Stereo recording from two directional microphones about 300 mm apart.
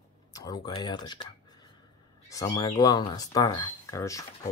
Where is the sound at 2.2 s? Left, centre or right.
Centre.